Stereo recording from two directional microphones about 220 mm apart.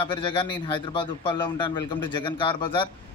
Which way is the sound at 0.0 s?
20° left (ahead or behind).